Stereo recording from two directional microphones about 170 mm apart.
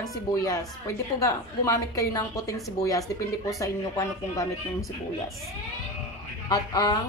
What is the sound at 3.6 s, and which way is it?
Speech, 20° left (ahead or behind).